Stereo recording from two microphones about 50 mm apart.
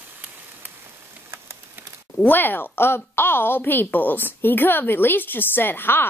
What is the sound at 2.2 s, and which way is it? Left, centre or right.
A woman's voice, left.